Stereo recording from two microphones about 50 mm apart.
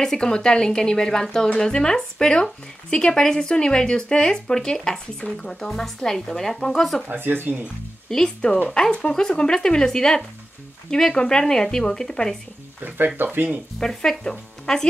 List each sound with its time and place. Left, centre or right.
0.0 s speech: centre
7.1 s speech: right
8.1 s speech: centre
12.8 s speech: right
13.7 s speech: centre